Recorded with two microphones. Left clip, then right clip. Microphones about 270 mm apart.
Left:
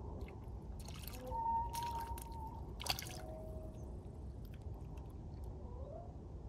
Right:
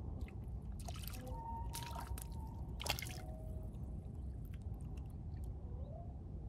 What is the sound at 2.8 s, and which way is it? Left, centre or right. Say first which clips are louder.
Drip: even; centre.